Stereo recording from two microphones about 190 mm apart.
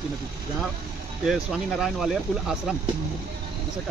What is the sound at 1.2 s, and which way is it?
Speech, centre (ahead or behind).